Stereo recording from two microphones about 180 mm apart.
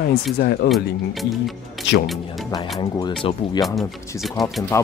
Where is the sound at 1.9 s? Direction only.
85° left.